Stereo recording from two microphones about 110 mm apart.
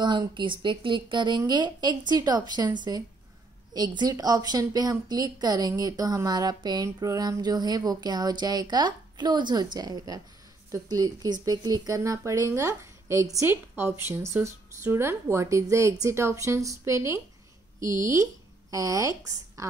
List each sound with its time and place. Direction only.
0.0 s a woman's voice: 45° right (ahead or behind)